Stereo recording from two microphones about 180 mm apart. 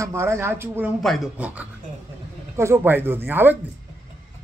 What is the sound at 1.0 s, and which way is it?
A man's voice, centre (ahead or behind).